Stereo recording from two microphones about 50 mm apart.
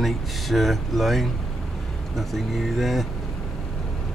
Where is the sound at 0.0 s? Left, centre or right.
Centre.